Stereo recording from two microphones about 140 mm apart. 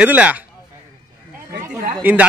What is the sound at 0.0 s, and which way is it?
Speech, 10° right (ahead or behind).